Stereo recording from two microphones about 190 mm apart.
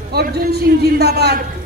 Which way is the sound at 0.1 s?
55° right (ahead or behind).